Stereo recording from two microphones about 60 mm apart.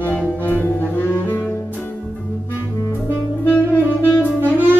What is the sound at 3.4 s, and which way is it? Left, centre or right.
Saxophone, left.